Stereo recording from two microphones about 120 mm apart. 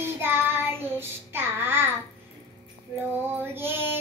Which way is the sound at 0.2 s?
20° right (ahead or behind).